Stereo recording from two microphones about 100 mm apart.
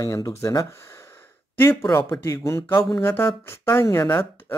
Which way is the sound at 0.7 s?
25° left (ahead or behind).